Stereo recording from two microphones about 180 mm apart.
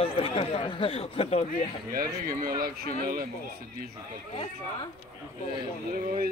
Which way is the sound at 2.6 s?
55° right (ahead or behind).